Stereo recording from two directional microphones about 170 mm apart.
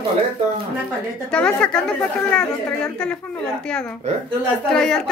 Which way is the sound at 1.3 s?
5° left (ahead or behind).